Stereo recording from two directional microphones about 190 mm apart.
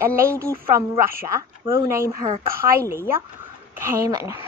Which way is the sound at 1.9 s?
15° right (ahead or behind).